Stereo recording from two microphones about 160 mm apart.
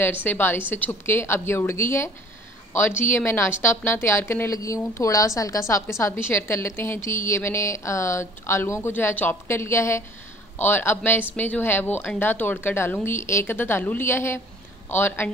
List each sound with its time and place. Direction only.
0.0 s a woman's voice: 10° left (ahead or behind)